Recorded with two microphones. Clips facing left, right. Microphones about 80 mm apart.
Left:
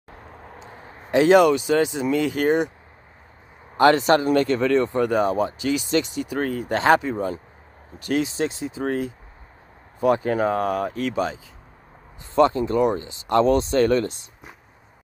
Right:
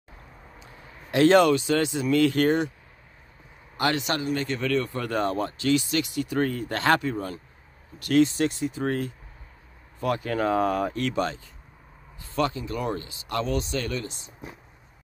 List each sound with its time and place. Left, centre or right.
0.7 s a sound: left
1.1 s speech: centre
3.7 s speech: left
4.6 s speech: left
5.9 s speech: left
6.2 s speech: centre
9.9 s speech: left
10.5 s speech: centre
12.4 s speech: left
12.8 s speech: left